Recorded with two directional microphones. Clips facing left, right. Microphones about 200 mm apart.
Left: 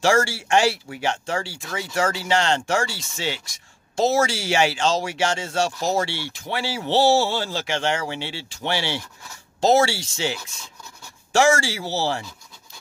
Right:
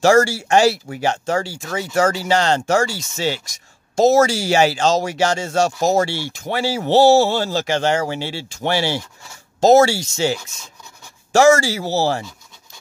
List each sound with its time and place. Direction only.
0.0 s speech: 40° right (ahead or behind)
11.3 s speech: 40° right (ahead or behind)